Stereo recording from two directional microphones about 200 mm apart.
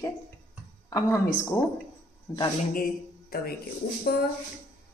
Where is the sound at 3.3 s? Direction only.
50° left (ahead or behind).